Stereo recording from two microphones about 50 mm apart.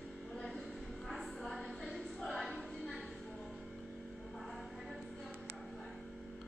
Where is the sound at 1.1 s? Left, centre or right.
Centre.